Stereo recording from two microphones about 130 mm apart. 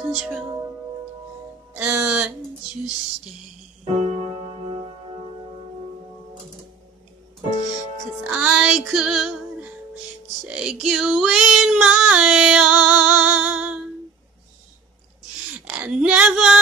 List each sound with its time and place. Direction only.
1.7 s music: 10° right (ahead or behind)
3.9 s music: 65° right (ahead or behind)
8.2 s music: 10° right (ahead or behind)
10.6 s female singing: 5° right (ahead or behind)
15.7 s female singing: 10° right (ahead or behind)